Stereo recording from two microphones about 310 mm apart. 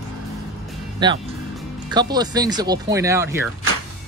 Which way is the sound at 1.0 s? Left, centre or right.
Centre.